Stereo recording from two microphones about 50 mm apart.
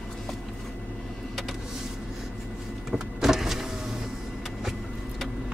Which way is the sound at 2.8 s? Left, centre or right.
Centre.